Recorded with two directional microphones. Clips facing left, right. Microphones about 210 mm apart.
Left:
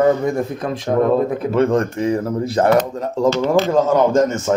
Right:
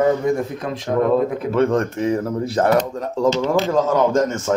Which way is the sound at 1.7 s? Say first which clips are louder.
Left 1 dB; centre (ahead or behind).